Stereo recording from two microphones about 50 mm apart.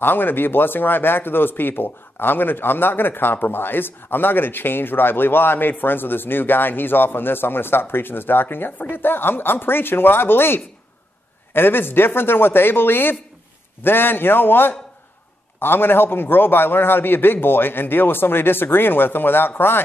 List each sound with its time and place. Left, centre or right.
0.0 s speech: left